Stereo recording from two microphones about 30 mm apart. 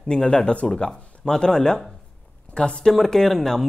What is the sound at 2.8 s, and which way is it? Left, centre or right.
Speech, centre.